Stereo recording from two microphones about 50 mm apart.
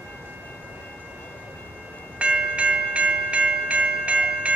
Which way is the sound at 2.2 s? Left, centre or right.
Right.